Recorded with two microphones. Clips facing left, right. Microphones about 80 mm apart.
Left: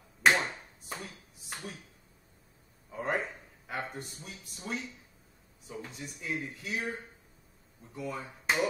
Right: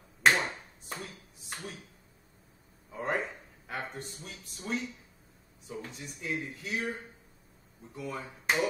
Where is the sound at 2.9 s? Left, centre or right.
Centre.